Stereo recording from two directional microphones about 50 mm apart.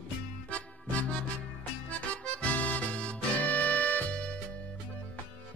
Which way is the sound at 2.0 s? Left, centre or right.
Left.